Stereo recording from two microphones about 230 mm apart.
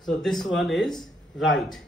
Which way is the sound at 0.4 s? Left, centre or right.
Centre.